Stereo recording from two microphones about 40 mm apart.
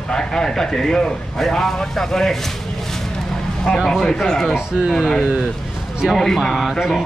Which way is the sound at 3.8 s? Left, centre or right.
Centre.